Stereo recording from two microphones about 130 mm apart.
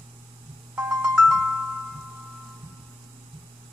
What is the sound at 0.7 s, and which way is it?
Music, 5° right (ahead or behind).